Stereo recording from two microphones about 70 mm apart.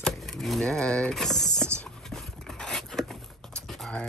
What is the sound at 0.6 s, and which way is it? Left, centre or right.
Speech, centre.